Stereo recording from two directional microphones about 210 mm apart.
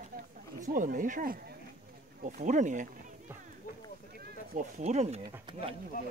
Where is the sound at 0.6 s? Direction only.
40° right (ahead or behind).